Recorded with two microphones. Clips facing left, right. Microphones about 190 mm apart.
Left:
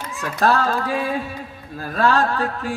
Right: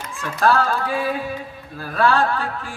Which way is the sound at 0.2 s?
40° left (ahead or behind).